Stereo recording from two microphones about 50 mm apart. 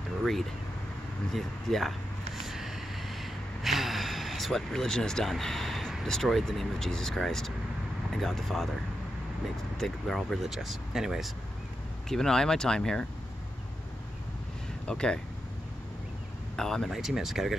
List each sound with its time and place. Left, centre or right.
0.2 s speech: centre
2.4 s gasp: centre
5.3 s speech: centre
9.8 s speech: centre
12.1 s speech: centre
14.9 s speech: centre
16.5 s speech: centre
16.9 s speech: centre